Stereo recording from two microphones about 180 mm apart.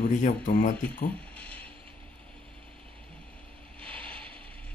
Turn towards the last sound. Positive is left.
turn(degrees=5)  # may be behind; listen again after turning